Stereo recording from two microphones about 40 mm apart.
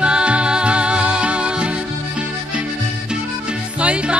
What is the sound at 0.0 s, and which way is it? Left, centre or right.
Music, right.